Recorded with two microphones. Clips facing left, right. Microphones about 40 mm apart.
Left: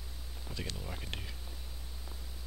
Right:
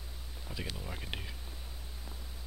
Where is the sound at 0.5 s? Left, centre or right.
Centre.